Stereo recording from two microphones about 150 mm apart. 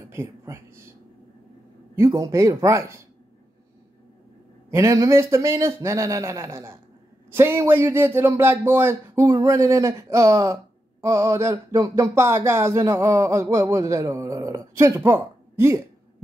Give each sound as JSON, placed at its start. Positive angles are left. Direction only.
{"t": 0.1, "sound": "speech", "side_deg": -15}
{"t": 2.0, "sound": "speech", "side_deg": -20}
{"t": 4.6, "sound": "speech", "side_deg": -20}